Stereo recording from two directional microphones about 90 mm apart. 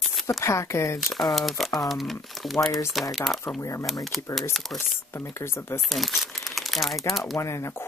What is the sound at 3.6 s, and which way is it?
Speech, 35° left (ahead or behind).